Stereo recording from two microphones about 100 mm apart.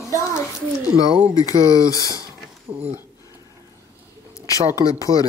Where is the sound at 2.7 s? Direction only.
25° right (ahead or behind).